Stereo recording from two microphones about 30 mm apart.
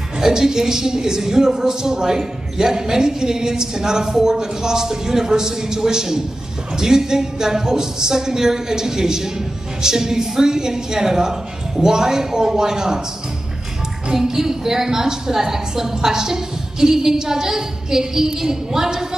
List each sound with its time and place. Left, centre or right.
0.2 s a woman's voice: right
14.1 s a woman's voice: centre